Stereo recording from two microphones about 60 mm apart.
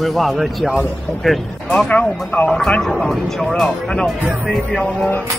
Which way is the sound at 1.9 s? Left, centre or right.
Left.